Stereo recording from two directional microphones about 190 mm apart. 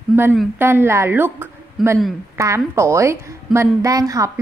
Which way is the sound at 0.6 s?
10° right (ahead or behind).